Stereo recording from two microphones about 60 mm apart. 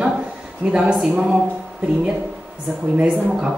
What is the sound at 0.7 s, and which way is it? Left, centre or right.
Speech, centre.